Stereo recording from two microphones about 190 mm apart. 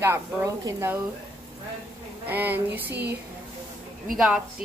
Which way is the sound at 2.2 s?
10° right (ahead or behind).